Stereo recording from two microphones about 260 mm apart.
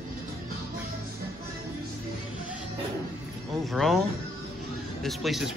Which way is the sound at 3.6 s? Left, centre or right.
Centre.